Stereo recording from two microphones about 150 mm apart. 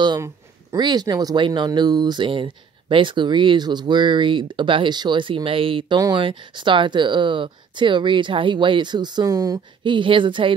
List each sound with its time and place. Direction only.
0.0 s speech: 25° right (ahead or behind)